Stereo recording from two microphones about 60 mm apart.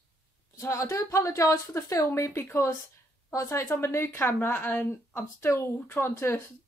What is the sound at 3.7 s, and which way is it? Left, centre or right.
A woman's voice, left.